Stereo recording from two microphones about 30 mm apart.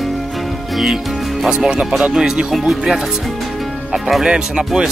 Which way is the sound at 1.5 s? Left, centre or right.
Right.